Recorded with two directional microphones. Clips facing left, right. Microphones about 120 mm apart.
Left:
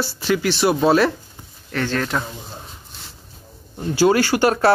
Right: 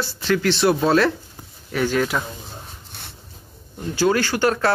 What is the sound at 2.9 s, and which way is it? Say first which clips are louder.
Dog: right 4 dB; 65° right (ahead or behind).